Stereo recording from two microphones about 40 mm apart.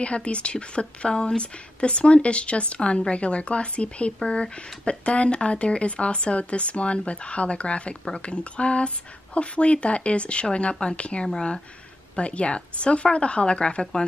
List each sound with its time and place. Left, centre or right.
0.0 s speech: left
11.2 s speech: centre
12.2 s speech: left